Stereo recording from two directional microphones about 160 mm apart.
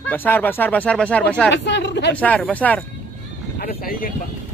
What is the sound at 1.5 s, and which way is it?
Speech, 90° left.